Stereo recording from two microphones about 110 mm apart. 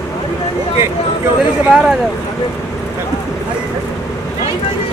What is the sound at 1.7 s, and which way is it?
Speech, 5° right (ahead or behind).